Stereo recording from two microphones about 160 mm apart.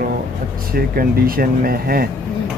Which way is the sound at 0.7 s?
65° right (ahead or behind).